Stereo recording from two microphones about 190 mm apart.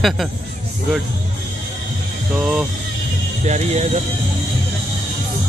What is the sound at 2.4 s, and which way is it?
Speech, 5° right (ahead or behind).